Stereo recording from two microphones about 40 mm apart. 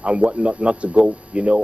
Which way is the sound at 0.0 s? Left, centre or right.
Right.